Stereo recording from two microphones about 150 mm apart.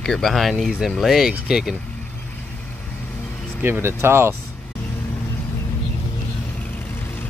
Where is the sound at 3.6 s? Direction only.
15° right (ahead or behind).